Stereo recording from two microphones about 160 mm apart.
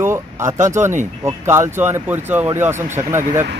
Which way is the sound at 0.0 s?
15° right (ahead or behind).